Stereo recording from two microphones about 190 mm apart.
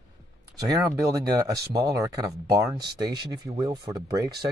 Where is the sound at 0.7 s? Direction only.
20° right (ahead or behind).